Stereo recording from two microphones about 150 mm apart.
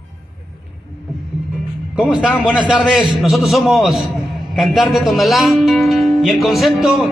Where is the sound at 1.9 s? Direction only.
5° right (ahead or behind).